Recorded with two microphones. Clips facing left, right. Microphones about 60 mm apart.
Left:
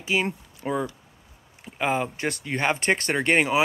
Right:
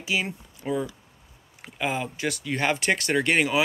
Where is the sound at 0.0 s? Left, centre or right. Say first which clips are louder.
Left 3 dB; left.